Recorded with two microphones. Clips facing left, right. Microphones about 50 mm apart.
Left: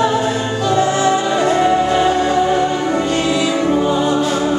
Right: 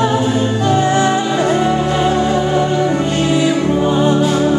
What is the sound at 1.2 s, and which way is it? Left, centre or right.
Music, centre.